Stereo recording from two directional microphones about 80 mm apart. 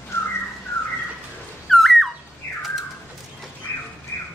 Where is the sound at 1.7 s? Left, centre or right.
Centre.